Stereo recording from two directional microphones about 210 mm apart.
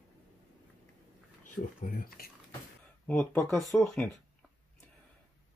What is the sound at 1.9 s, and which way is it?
Speech, 40° left (ahead or behind).